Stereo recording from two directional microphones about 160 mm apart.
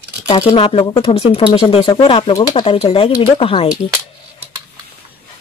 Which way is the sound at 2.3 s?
25° left (ahead or behind).